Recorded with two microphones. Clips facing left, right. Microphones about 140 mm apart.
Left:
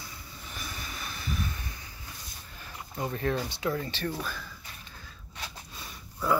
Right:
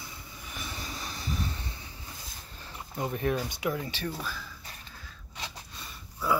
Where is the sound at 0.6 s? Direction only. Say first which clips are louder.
Right 2 dB; 25° right (ahead or behind).